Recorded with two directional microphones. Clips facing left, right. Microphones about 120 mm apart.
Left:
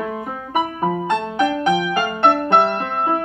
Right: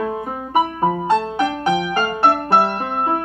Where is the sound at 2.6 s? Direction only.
10° right (ahead or behind).